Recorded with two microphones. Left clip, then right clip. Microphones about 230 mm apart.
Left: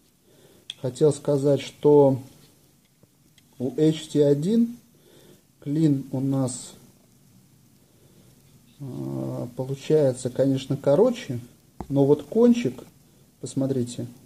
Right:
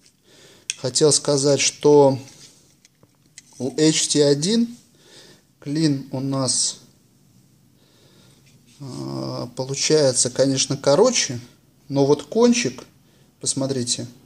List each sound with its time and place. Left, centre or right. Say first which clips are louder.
0.4 s speech: right 5 dB; centre
3.7 s speech: right 4 dB; centre
8.8 s cat: right 3 dB; centre
9.4 s speech: right 7 dB; centre